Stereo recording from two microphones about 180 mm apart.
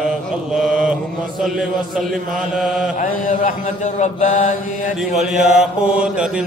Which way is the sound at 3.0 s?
45° left (ahead or behind).